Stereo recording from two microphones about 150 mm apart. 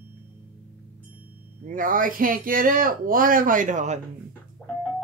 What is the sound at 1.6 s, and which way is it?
Speech, 65° right (ahead or behind).